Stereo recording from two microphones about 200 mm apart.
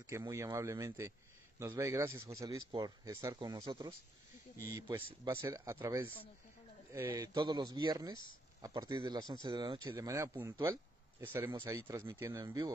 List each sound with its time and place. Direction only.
0.0 s speech: 15° right (ahead or behind)
6.0 s speech: 25° left (ahead or behind)
6.9 s speech: 15° right (ahead or behind)